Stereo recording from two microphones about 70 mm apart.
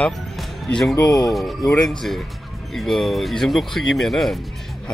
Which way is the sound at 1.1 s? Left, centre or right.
Left.